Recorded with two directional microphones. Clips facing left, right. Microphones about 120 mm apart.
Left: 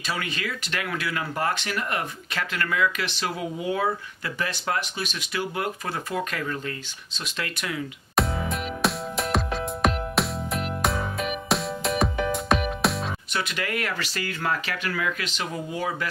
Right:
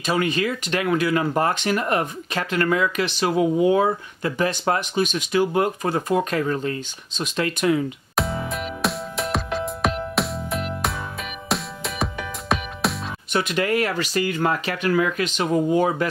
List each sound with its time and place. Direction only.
0.2 s speech: 25° right (ahead or behind)
8.2 s music: centre (ahead or behind)
13.3 s speech: 25° right (ahead or behind)
13.9 s speech: 15° right (ahead or behind)